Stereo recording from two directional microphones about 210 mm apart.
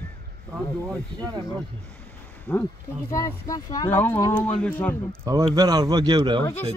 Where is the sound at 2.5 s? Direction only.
10° left (ahead or behind).